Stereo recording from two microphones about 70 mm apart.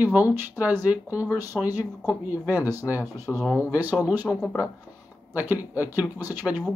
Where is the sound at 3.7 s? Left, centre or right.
Right.